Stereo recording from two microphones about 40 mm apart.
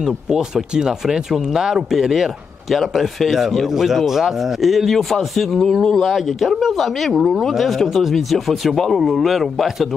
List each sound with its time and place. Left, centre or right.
0.0 s speech: centre
5.8 s speech: centre
6.0 s speech: centre